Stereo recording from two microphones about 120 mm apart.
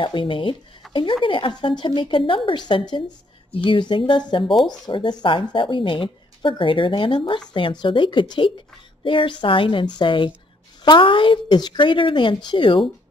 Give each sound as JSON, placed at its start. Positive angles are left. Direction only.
{"t": 0.0, "sound": "speech", "side_deg": 45}
{"t": 0.8, "sound": "a sound", "side_deg": 0}
{"t": 1.2, "sound": "speech", "side_deg": 45}